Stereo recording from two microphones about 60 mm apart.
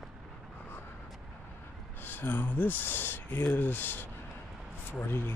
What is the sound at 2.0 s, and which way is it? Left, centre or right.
Speech, left.